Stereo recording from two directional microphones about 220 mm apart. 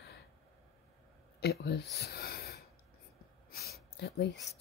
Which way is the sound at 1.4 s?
45° left (ahead or behind).